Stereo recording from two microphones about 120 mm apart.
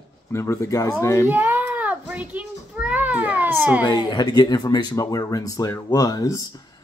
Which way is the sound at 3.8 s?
35° left (ahead or behind).